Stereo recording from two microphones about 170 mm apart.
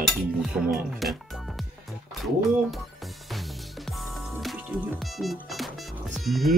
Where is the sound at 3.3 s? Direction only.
Centre (ahead or behind).